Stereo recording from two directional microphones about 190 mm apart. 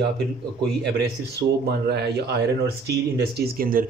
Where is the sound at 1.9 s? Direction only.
60° right (ahead or behind).